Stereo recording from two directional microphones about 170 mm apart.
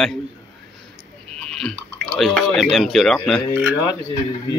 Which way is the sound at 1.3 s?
5° left (ahead or behind).